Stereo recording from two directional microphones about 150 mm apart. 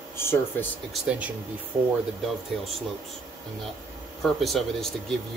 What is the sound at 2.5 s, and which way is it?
Speech, centre (ahead or behind).